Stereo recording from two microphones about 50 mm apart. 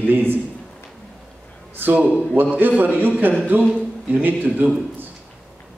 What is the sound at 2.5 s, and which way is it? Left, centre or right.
Speech, right.